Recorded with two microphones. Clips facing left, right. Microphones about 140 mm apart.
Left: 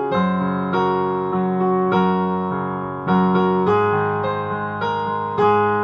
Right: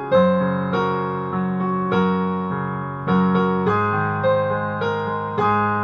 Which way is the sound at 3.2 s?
55° left (ahead or behind).